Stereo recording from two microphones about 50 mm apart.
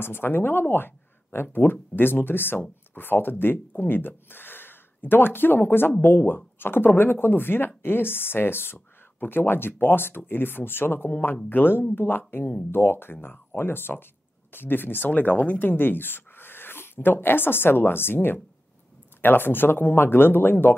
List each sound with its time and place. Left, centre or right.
0.0 s speech: left
15.0 s speech: left
15.6 s speech: left